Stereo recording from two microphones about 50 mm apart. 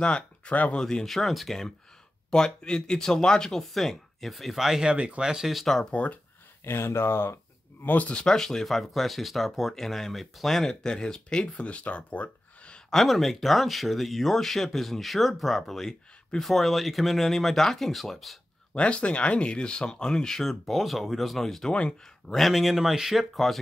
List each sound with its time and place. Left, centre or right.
0.0 s speech: left
0.7 s speech: centre
2.3 s speech: centre
4.9 s speech: right
5.2 s speech: centre
5.5 s speech: centre
6.6 s speech: left
7.8 s speech: left
8.1 s speech: centre
8.4 s speech: centre
11.5 s speech: left
12.9 s speech: centre
18.7 s speech: left; by 23.6 s centre